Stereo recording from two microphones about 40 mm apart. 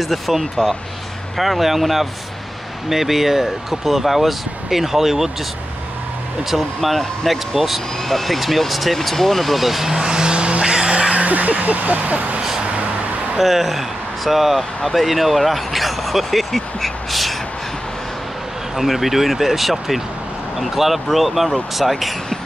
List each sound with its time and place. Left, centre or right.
0.0 s speech: centre
6.5 s speech: centre; by 11.2 s right
11.2 s speech: right
13.4 s speech: centre
18.8 s speech: centre